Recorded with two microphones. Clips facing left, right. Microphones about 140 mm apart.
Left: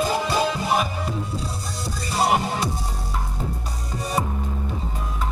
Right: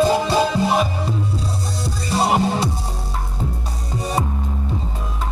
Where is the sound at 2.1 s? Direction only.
30° right (ahead or behind).